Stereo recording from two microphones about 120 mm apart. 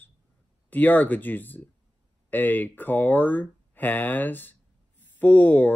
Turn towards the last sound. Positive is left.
turn(degrees=15)  # may be behind; listen again after turning